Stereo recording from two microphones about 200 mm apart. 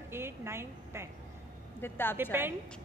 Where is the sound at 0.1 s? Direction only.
10° right (ahead or behind).